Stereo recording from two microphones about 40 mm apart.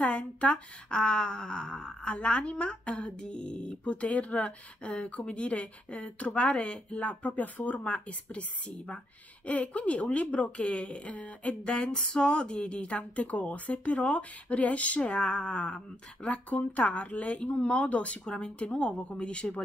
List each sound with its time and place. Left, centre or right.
0.0 s a sound: left
0.9 s speech: left
11.6 s speech: left
18.2 s speech: left